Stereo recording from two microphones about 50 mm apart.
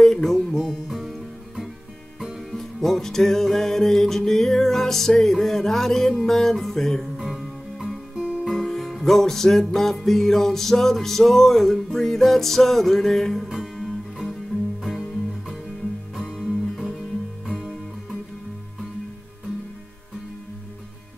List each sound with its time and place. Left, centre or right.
0.0 s music: centre
2.5 s music: centre
8.5 s music: centre
13.5 s music: centre
16.3 s music: centre